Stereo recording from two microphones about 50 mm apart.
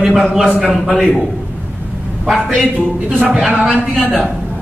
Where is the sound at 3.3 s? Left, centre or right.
Centre.